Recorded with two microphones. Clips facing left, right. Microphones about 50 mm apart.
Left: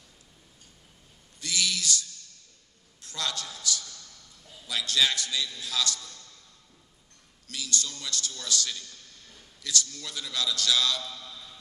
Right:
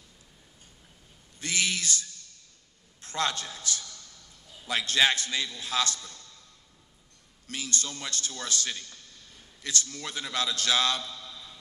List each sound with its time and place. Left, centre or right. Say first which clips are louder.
1.4 s a man's voice: right 1 dB; right
3.0 s a sound: right 4 dB; right
4.6 s a man's voice: right 2 dB; right
7.4 s a man's voice: even; right